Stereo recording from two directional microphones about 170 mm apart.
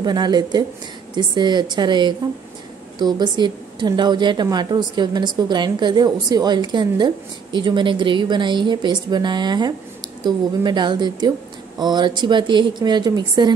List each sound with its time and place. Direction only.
0.0 s a woman's voice: 25° right (ahead or behind)